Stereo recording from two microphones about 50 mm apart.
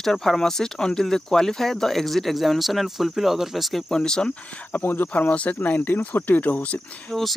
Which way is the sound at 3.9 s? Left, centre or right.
Centre.